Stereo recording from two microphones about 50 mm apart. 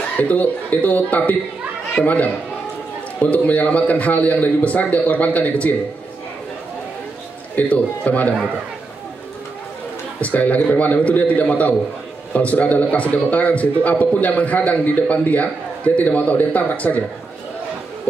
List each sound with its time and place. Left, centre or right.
0.2 s speech: left
7.5 s speech: left
10.2 s speech: left